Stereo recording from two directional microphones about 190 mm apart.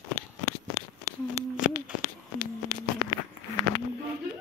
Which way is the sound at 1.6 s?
5° right (ahead or behind).